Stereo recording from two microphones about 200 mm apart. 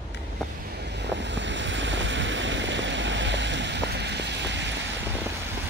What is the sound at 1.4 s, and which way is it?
Vehicle, 65° right (ahead or behind).